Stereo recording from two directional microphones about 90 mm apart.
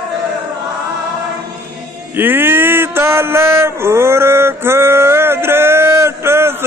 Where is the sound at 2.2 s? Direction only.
25° right (ahead or behind).